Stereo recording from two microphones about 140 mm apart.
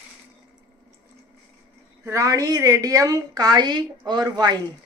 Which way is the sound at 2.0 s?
20° right (ahead or behind).